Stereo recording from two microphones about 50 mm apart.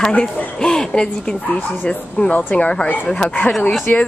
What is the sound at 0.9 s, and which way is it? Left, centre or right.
A woman's voice, left.